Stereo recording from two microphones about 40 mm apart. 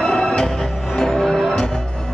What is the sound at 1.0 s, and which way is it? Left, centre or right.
Music, centre.